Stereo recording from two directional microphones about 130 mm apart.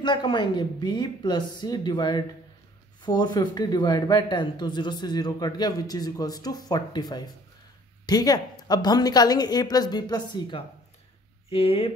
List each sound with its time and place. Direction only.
0.0 s speech: 35° left (ahead or behind)
11.4 s speech: 50° left (ahead or behind)